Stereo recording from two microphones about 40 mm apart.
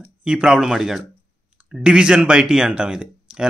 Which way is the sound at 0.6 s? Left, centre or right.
Centre.